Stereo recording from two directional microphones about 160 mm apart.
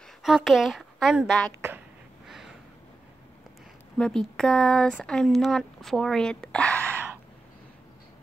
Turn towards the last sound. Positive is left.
turn(degrees=-15)  # may be behind; listen again after turning